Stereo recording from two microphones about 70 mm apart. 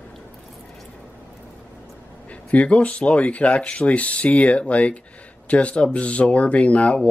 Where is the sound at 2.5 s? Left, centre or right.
Centre.